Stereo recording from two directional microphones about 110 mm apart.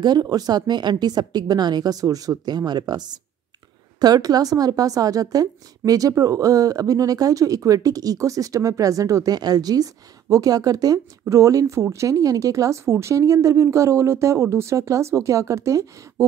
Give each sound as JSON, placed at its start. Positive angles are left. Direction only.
{"t": 0.0, "sound": "a woman's voice", "side_deg": -40}